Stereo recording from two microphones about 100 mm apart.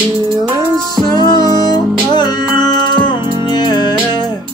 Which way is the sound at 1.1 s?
45° left (ahead or behind).